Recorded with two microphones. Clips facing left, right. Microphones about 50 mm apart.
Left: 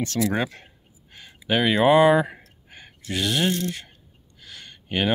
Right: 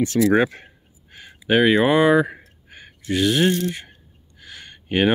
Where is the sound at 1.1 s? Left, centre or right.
Centre.